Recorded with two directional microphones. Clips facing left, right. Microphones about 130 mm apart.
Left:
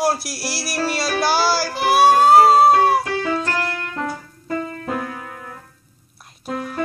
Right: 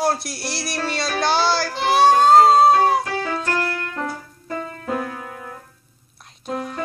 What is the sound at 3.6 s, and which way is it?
Keyboard, 15° left (ahead or behind).